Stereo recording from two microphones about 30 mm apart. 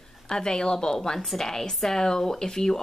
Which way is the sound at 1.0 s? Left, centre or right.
Centre.